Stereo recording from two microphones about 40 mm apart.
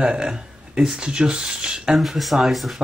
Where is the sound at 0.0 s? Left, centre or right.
Centre.